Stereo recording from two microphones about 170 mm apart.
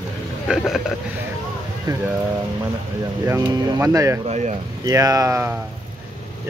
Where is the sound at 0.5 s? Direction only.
Centre (ahead or behind).